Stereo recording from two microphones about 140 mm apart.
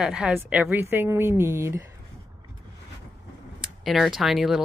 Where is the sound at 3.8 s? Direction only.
Centre (ahead or behind).